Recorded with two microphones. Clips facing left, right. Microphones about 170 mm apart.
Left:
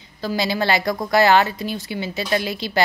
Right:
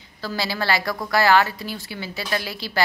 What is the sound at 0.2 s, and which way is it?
A woman's voice, 20° left (ahead or behind).